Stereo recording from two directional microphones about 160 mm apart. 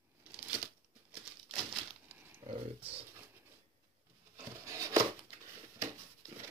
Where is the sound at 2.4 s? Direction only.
35° right (ahead or behind).